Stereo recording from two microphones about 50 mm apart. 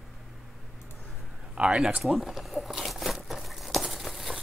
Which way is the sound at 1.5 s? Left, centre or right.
Centre.